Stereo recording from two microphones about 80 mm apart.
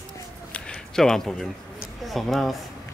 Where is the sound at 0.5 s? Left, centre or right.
Centre.